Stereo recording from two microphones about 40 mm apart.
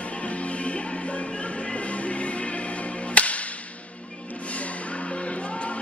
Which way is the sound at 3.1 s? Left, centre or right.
Left.